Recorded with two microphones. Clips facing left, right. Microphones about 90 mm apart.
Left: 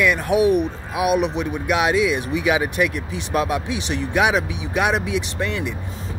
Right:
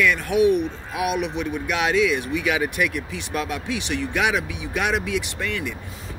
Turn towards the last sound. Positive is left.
turn(degrees=25)  # may be behind; listen again after turning